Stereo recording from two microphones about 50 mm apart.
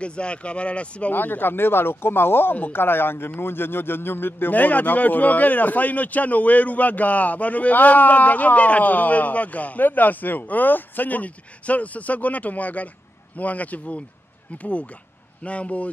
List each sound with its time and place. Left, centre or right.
0.0 s speech: left
1.1 s speech: left